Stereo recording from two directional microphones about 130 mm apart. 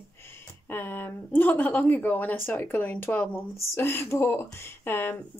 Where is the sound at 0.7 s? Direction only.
15° left (ahead or behind).